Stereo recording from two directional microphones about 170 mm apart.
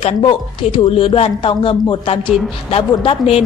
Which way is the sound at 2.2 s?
Centre (ahead or behind).